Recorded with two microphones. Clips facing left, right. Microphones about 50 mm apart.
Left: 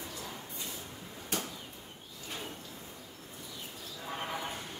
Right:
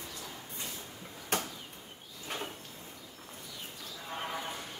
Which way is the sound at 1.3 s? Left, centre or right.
Right.